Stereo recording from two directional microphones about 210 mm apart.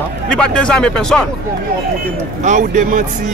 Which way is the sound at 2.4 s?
35° right (ahead or behind).